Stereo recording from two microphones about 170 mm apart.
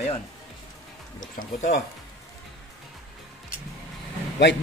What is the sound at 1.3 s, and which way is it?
Speech, 55° left (ahead or behind).